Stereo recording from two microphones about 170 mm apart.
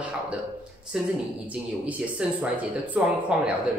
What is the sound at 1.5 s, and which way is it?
Speech, 5° right (ahead or behind).